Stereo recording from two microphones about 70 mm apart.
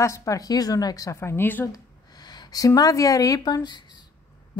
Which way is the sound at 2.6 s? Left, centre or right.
Left.